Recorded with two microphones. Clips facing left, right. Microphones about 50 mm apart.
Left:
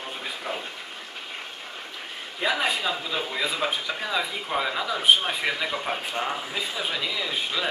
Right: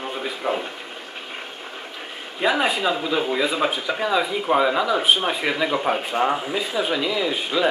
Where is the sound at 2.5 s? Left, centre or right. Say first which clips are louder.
Right 4 dB; centre.